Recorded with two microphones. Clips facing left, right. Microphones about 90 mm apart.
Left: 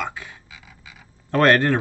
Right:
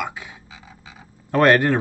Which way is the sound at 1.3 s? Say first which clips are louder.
Right 1 dB; 10° right (ahead or behind).